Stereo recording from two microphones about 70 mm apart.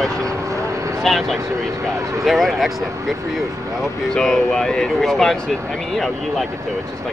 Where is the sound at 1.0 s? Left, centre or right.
Centre.